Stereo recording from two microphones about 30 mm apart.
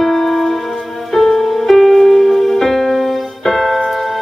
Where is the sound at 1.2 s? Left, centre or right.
Centre.